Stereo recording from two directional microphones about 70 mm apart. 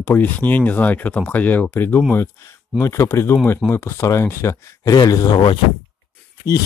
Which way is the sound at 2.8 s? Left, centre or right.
Left.